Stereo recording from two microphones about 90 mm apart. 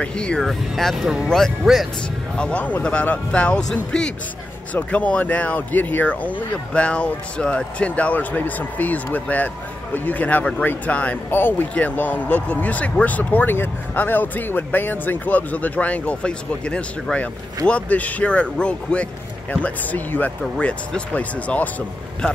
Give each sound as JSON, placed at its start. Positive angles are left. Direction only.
{"t": 0.0, "sound": "speech", "side_deg": 10}
{"t": 2.3, "sound": "speech", "side_deg": 15}